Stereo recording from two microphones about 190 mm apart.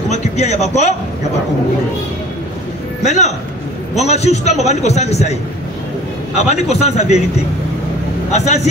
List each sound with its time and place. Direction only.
0.1 s a man's voice: 35° left (ahead or behind)
3.1 s a man's voice: 35° left (ahead or behind)
6.5 s a man's voice: 35° left (ahead or behind)
8.3 s a man's voice: 35° left (ahead or behind)